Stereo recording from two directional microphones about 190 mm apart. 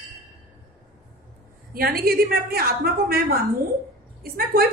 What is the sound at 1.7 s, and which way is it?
A woman's voice, 55° right (ahead or behind).